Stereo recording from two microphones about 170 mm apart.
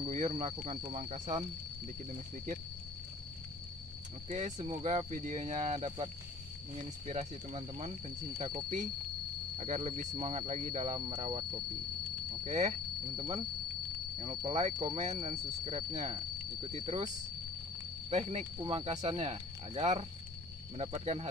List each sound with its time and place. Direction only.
0.1 s speech: 45° right (ahead or behind)
4.3 s speech: 45° right (ahead or behind)
8.4 s speech: 25° right (ahead or behind)
9.7 s speech: 30° right (ahead or behind)
11.0 s speech: 30° right (ahead or behind)
12.4 s speech: 45° right (ahead or behind)
14.1 s speech: 30° right (ahead or behind)
18.1 s speech: 40° right (ahead or behind)